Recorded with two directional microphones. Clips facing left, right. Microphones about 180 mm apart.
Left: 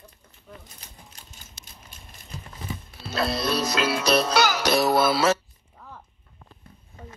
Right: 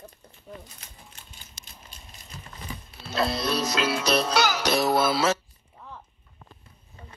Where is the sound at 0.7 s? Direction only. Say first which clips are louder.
Left 1 dB; 40° left (ahead or behind).